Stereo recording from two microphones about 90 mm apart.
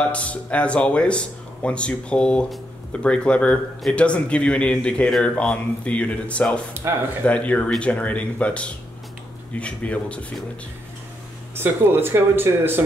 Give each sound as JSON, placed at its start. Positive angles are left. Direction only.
{"t": 0.1, "sound": "speech", "side_deg": 15}
{"t": 6.7, "sound": "speech", "side_deg": -30}
{"t": 7.2, "sound": "speech", "side_deg": 15}
{"t": 11.5, "sound": "speech", "side_deg": -25}